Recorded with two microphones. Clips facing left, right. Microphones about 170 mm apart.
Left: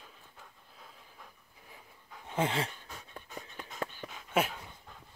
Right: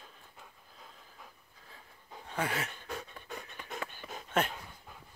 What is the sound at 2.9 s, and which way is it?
Pant, 70° right (ahead or behind).